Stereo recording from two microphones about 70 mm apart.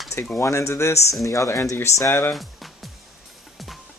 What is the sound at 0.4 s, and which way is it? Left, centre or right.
Speech, left.